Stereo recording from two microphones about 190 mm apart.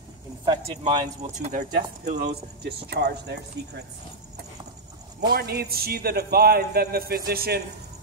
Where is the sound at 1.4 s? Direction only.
50° right (ahead or behind).